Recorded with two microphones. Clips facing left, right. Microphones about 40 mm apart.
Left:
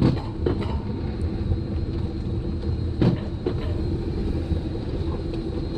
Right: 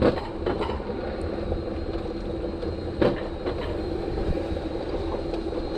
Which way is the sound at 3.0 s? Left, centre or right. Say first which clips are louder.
Right 1 dB; right.